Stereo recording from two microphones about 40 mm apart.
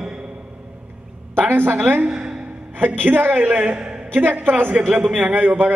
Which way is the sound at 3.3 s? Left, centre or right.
Right.